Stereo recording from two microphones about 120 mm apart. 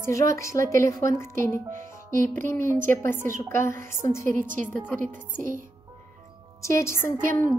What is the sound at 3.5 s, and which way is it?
Speech, 25° left (ahead or behind).